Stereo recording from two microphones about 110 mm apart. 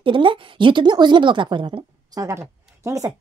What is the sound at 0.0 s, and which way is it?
Speech, 50° right (ahead or behind).